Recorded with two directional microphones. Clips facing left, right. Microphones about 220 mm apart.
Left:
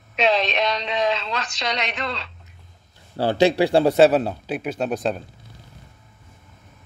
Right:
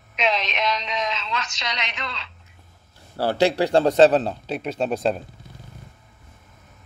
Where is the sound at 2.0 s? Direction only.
35° left (ahead or behind).